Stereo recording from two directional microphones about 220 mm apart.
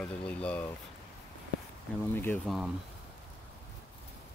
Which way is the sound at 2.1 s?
10° left (ahead or behind).